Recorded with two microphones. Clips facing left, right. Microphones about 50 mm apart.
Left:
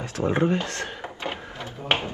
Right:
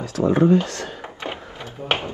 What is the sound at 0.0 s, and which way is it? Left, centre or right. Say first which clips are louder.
Speech: right 5 dB; left.